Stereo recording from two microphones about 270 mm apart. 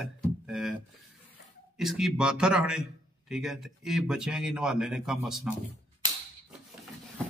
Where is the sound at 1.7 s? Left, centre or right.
Centre.